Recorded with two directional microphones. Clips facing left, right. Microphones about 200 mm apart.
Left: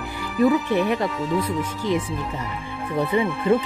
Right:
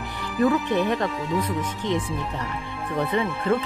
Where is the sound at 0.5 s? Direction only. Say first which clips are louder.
Left 1 dB; 5° left (ahead or behind).